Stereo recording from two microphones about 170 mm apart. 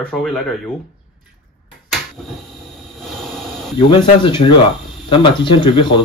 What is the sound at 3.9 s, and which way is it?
Speech, 30° left (ahead or behind).